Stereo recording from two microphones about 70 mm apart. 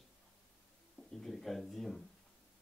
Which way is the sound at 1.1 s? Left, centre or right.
Centre.